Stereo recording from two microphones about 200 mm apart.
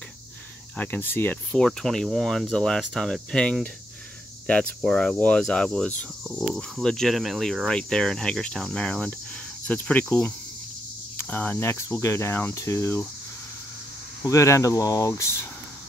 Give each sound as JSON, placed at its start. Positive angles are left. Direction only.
{"t": 0.7, "sound": "speech", "side_deg": 10}
{"t": 9.7, "sound": "cricket", "side_deg": 5}
{"t": 14.2, "sound": "cricket", "side_deg": 15}